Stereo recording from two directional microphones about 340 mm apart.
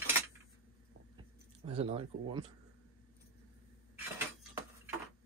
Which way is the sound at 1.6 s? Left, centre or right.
Centre.